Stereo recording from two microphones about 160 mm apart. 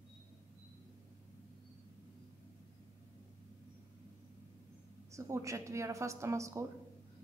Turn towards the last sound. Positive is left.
turn(degrees=-20)  # may be behind; listen again after turning